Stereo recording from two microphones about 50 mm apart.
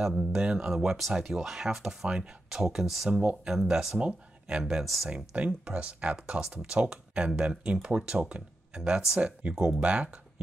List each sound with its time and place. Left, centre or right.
0.0 s speech: centre
3.1 s speech: centre
4.0 s speech: right
4.6 s speech: centre
5.0 s speech: right
9.4 s speech: right